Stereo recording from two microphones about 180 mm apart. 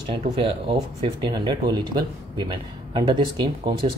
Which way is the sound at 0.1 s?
30° right (ahead or behind).